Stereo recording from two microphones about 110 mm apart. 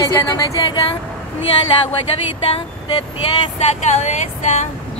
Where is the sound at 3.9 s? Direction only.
90° left.